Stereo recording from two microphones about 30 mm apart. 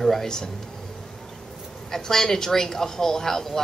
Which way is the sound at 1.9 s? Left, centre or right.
Centre.